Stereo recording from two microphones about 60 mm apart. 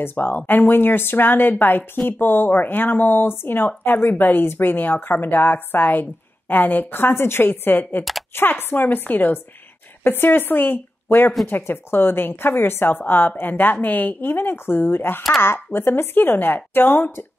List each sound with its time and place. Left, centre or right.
0.0 s speech: left